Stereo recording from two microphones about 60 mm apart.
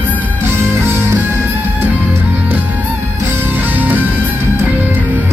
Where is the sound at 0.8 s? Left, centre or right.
Right.